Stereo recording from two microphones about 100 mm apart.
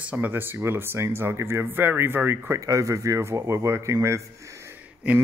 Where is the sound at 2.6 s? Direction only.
35° right (ahead or behind).